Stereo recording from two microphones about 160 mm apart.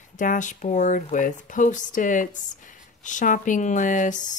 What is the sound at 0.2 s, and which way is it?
Speech, 50° left (ahead or behind).